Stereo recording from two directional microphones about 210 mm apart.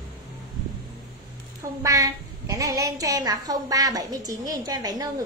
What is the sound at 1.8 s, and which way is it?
A woman's voice, 15° right (ahead or behind).